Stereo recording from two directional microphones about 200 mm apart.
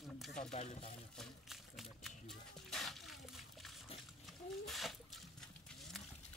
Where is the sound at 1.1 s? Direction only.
Centre (ahead or behind).